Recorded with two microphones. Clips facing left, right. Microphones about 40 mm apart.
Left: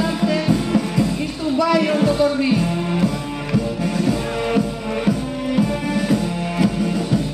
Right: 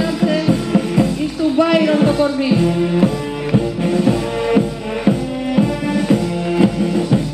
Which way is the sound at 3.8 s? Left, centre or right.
Right.